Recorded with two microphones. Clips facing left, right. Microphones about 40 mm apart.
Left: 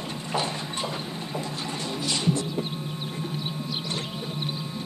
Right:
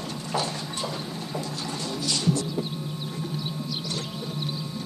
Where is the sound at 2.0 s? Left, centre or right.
Left.